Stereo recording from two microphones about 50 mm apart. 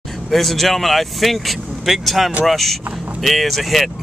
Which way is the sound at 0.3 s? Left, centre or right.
Centre.